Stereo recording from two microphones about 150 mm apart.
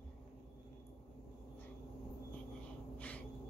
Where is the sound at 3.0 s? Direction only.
10° left (ahead or behind).